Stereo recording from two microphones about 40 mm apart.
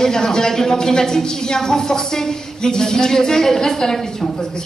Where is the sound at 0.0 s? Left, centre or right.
Centre.